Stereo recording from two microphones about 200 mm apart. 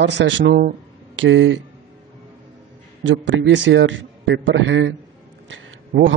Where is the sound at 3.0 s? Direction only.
65° right (ahead or behind).